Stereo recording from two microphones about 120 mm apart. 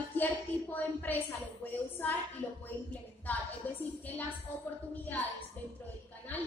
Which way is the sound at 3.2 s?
15° left (ahead or behind).